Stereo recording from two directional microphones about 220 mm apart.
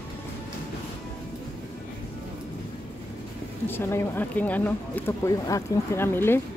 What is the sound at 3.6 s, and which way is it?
Speech, 10° left (ahead or behind).